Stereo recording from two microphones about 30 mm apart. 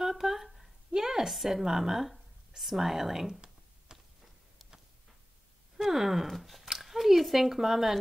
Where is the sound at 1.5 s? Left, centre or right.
Centre.